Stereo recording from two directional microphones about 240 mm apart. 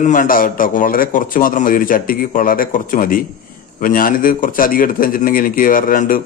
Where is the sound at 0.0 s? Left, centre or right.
Left.